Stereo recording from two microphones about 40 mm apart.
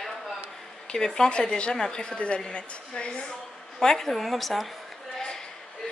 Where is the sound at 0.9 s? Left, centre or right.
Centre.